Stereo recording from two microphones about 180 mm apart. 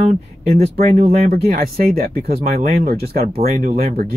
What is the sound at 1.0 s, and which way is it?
Speech, 55° right (ahead or behind).